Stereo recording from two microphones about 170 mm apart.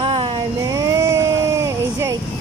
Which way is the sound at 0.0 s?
35° right (ahead or behind).